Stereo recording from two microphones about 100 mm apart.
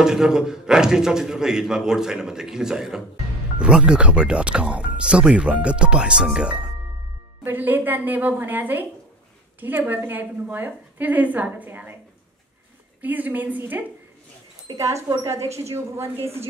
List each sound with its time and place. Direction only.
0.0 s a man's voice: 5° right (ahead or behind)
7.4 s a woman's voice: 20° right (ahead or behind)
13.0 s speech: 15° right (ahead or behind)
15.2 s a woman's voice: 30° right (ahead or behind)